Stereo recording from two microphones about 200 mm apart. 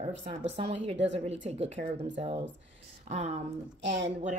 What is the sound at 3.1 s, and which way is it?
Speech, 35° right (ahead or behind).